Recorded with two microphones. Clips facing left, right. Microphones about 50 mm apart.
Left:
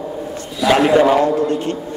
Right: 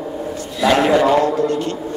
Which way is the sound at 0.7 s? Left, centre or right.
Centre.